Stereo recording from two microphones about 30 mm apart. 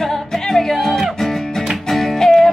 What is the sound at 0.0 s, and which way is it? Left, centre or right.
Music, centre.